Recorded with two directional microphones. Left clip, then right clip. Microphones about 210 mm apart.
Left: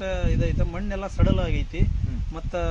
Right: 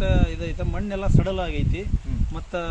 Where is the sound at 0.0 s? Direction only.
15° left (ahead or behind).